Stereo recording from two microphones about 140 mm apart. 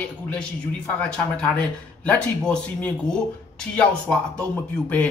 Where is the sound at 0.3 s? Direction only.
5° left (ahead or behind).